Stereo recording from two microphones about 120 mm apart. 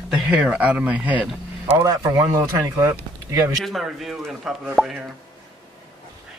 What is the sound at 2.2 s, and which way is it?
Speech, 30° right (ahead or behind).